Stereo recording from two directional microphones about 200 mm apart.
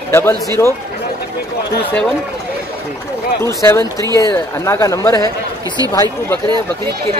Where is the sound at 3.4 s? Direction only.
15° left (ahead or behind).